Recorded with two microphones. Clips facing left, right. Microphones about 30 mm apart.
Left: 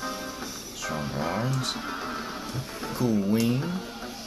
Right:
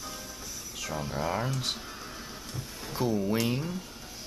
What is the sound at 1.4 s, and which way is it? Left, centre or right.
Speech, centre.